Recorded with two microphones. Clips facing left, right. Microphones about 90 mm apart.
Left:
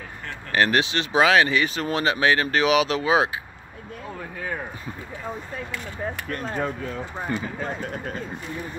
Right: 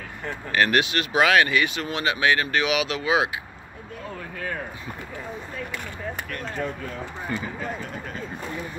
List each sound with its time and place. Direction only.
0.5 s speech: 30° left (ahead or behind)
7.2 s speech: 40° left (ahead or behind)